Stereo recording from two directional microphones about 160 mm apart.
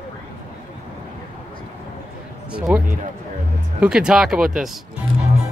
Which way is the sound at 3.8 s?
5° right (ahead or behind).